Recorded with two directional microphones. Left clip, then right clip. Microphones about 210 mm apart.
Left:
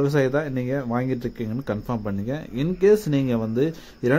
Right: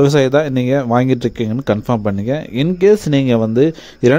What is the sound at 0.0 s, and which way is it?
Speech, 40° right (ahead or behind).